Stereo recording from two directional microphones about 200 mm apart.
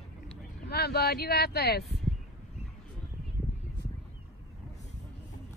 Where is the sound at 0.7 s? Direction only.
55° left (ahead or behind).